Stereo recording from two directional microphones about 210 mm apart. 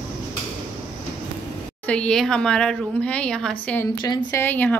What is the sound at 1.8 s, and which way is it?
A woman's voice, 5° left (ahead or behind).